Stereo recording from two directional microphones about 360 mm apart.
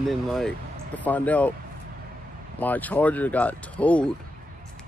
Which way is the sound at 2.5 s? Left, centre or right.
Centre.